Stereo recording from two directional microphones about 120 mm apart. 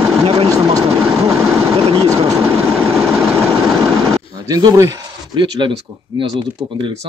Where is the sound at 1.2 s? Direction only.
55° right (ahead or behind).